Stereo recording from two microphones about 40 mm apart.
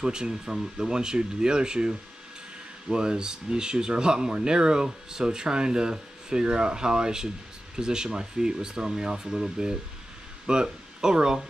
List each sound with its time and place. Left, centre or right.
0.0 s speech: centre